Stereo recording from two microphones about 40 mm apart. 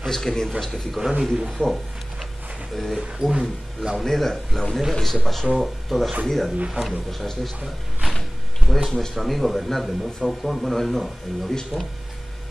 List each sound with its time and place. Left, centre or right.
0.0 s a man's voice: centre
1.3 s a man's voice: centre
3.2 s speech: centre
3.9 s a man's voice: centre
11.7 s speech: right